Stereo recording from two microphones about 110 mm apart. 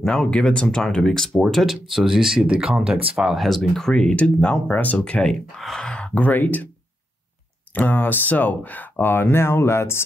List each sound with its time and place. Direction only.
0.0 s speech: 5° left (ahead or behind)
7.7 s speech: 15° left (ahead or behind)